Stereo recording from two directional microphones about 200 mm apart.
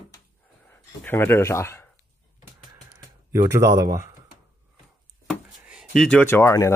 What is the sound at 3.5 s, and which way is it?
Speech, 15° right (ahead or behind).